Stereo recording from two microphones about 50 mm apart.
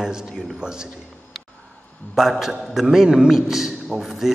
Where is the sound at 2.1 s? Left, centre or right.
Centre.